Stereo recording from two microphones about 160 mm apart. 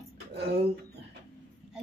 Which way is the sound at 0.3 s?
90° right.